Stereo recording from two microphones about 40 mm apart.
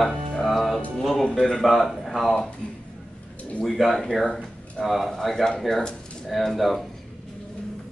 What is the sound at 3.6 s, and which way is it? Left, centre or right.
A man's voice, centre.